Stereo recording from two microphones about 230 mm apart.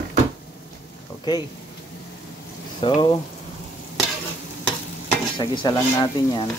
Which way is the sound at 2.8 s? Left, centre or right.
Centre.